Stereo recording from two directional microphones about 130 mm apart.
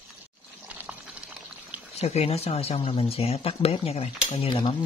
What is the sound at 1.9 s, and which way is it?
Speech, 55° left (ahead or behind).